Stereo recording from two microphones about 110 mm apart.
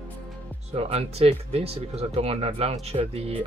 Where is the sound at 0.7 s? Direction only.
65° right (ahead or behind).